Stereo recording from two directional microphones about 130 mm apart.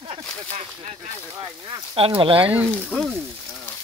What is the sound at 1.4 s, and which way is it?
Speech, 40° right (ahead or behind).